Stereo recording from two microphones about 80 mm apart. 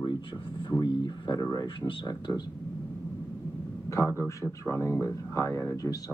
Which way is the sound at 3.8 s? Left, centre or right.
Left.